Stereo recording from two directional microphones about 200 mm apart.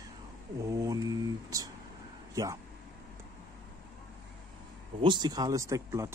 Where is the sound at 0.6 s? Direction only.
15° right (ahead or behind).